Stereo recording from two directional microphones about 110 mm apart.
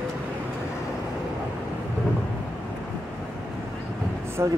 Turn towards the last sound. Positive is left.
turn(degrees=-25)  # may be behind; listen again after turning